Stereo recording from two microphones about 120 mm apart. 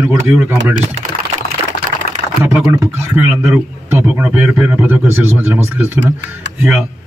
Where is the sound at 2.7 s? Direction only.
20° right (ahead or behind).